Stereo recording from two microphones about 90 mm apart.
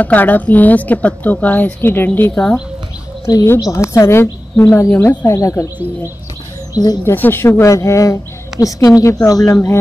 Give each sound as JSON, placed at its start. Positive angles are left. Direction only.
{"t": 0.0, "sound": "a woman's voice", "side_deg": 20}
{"t": 3.3, "sound": "a woman's voice", "side_deg": 50}
{"t": 3.6, "sound": "a woman's voice", "side_deg": 35}
{"t": 6.7, "sound": "speech", "side_deg": 45}
{"t": 7.1, "sound": "a woman's voice", "side_deg": 25}
{"t": 9.5, "sound": "a woman's voice", "side_deg": 30}